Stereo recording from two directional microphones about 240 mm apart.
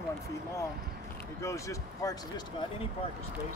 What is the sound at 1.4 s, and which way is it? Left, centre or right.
Speech, centre.